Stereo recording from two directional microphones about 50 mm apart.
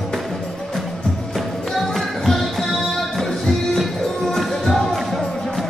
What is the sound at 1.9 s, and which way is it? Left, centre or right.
Music, centre.